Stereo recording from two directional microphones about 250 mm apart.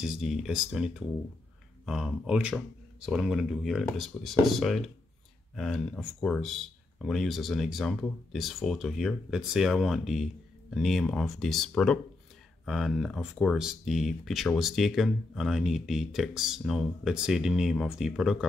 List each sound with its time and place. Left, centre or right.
0.0 s speech: centre